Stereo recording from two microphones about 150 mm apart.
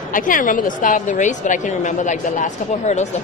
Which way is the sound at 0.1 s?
65° left (ahead or behind).